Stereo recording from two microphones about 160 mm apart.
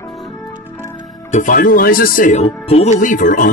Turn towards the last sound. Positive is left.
turn(degrees=55)  # may be behind; listen again after turning